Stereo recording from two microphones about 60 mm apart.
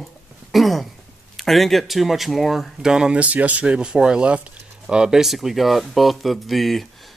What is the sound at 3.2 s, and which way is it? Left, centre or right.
Speech, right.